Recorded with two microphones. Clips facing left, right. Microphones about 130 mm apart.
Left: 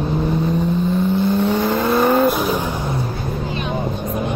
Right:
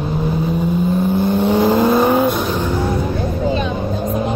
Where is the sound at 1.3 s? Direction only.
25° right (ahead or behind).